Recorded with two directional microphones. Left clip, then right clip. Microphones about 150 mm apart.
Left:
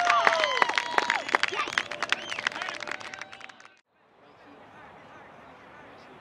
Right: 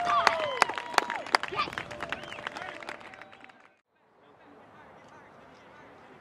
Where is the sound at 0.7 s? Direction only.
25° left (ahead or behind).